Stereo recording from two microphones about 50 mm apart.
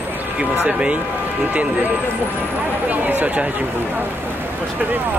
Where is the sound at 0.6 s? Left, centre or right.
Right.